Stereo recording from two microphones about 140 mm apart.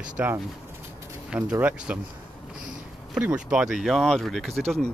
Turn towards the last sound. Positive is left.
turn(degrees=0)  # may be behind; listen again after turning